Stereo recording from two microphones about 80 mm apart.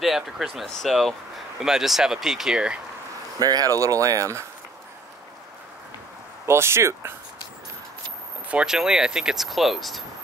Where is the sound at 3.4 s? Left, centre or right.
Right.